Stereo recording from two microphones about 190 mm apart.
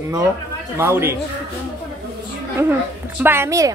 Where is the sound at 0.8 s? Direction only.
15° right (ahead or behind).